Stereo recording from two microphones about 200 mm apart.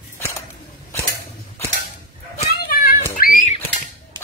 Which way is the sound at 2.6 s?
50° left (ahead or behind).